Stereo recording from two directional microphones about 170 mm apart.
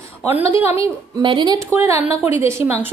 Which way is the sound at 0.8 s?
25° right (ahead or behind).